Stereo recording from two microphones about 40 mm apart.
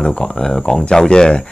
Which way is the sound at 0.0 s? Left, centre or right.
Centre.